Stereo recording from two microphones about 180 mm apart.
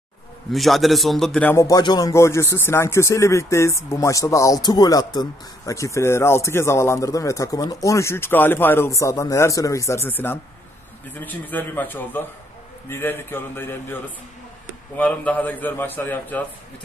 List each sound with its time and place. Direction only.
0.5 s a man's voice: centre (ahead or behind)
15.0 s a man's voice: 10° left (ahead or behind)